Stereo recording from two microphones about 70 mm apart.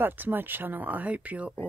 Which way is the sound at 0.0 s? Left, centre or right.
Right.